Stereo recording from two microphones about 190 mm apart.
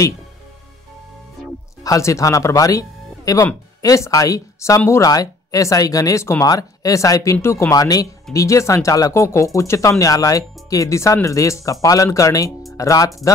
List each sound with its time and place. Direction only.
1.8 s speech: 15° left (ahead or behind)